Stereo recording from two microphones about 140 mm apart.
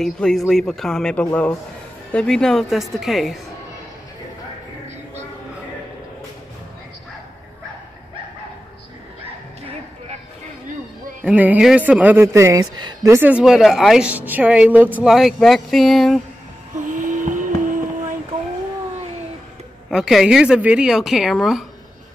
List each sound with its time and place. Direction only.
0.0 s a woman's voice: 5° left (ahead or behind)
11.2 s speech: 10° right (ahead or behind)
12.7 s speech: 30° right (ahead or behind)
13.1 s a woman's voice: 10° right (ahead or behind)
16.7 s a sound: 65° right (ahead or behind)
19.9 s a woman's voice: 5° right (ahead or behind)